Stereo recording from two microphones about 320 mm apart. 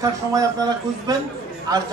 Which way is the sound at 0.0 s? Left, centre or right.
Centre.